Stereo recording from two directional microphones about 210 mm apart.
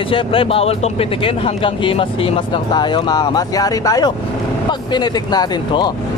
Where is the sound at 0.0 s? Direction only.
25° left (ahead or behind).